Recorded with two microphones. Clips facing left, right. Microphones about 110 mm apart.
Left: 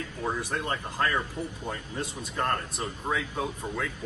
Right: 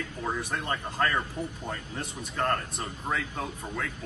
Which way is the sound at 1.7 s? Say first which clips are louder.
Left 2 dB; 15° left (ahead or behind).